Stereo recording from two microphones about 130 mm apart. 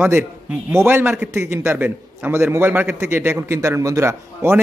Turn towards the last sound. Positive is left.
turn(degrees=-20)  # may be behind; listen again after turning